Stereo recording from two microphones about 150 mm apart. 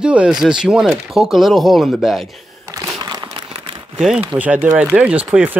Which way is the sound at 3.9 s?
5° right (ahead or behind).